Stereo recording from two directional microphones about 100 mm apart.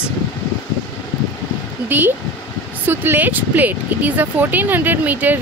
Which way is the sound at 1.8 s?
20° right (ahead or behind).